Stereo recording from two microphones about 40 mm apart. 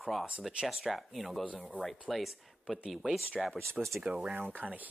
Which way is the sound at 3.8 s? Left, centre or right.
Centre.